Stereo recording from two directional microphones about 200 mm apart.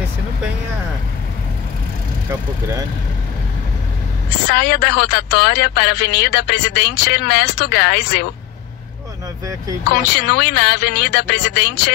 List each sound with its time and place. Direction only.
4.5 s speech: 55° left (ahead or behind)
10.3 s speech: 55° left (ahead or behind)